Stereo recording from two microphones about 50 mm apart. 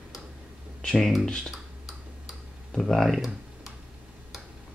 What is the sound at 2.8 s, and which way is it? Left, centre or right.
Speech, centre.